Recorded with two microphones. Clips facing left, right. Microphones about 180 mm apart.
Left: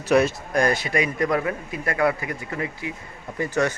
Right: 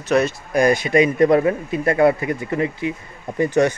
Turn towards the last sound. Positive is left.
turn(degrees=-20)  # may be behind; listen again after turning